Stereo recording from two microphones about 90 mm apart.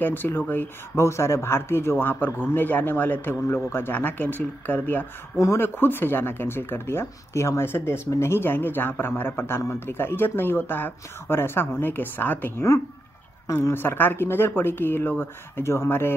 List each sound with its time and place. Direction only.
0.0 s speech: 20° left (ahead or behind)